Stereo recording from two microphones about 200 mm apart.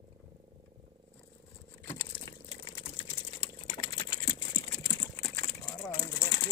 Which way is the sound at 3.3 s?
25° left (ahead or behind).